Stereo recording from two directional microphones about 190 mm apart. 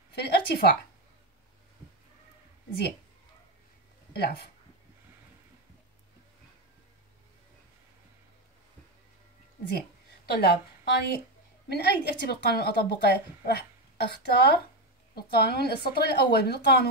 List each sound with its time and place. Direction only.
0.1 s a woman's voice: 55° left (ahead or behind)
4.1 s speech: 55° left (ahead or behind)
9.8 s a woman's voice: 55° left (ahead or behind)